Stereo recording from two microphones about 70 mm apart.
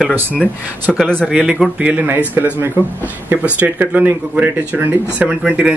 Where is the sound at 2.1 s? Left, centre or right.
Right.